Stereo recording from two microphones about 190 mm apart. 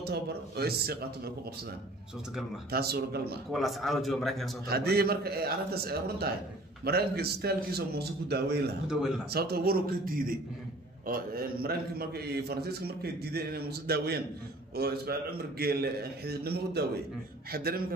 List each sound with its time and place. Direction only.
0.0 s a man's voice: 55° right (ahead or behind)
2.7 s a man's voice: 55° right (ahead or behind)
3.5 s a man's voice: centre (ahead or behind)
4.6 s a man's voice: 55° right (ahead or behind)